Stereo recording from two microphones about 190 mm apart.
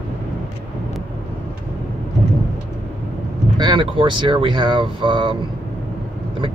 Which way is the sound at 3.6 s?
25° right (ahead or behind).